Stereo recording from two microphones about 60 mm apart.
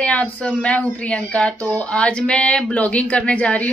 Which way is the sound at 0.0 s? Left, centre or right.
Left.